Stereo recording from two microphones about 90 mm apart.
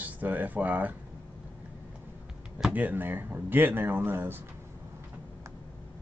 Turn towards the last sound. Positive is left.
turn(degrees=-25)  # may be behind; listen again after turning